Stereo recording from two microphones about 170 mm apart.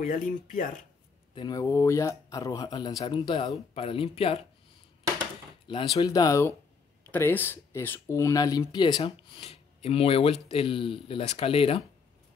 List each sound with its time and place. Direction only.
0.0 s speech: 50° left (ahead or behind)
1.3 s speech: 25° left (ahead or behind)
5.7 s speech: 30° left (ahead or behind)